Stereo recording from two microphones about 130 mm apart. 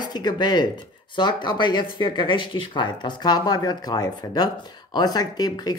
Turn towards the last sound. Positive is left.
turn(degrees=30)  # may be behind; listen again after turning